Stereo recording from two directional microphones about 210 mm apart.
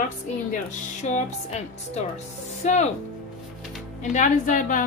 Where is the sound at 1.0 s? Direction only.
35° left (ahead or behind).